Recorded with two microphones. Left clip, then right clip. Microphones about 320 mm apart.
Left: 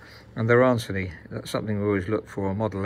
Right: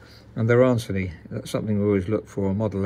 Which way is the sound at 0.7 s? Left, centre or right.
Centre.